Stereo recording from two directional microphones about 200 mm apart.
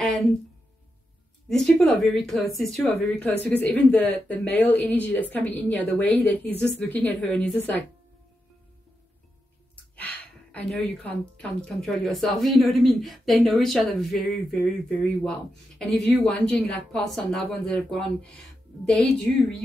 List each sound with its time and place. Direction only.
0.0 s a sound: centre (ahead or behind)
1.5 s speech: 5° left (ahead or behind)
9.9 s speech: 5° left (ahead or behind)